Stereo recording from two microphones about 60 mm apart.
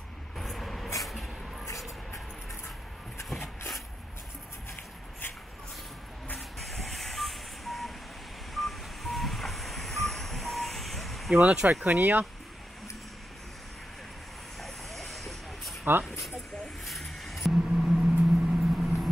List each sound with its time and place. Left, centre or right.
0.4 s vehicle: centre
1.0 s a sound: centre
6.7 s vehicle: centre
11.5 s speech: centre
11.8 s speech: right
14.6 s vehicle: centre
16.0 s speech: centre
16.8 s gong: centre